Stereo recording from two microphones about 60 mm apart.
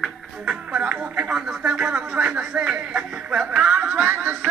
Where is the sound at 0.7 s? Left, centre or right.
Right.